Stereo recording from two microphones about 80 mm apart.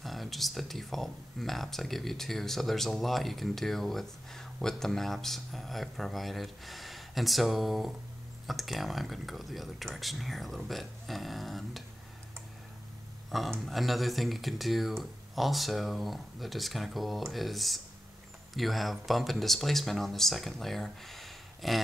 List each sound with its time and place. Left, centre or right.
0.0 s speech: centre
13.5 s speech: centre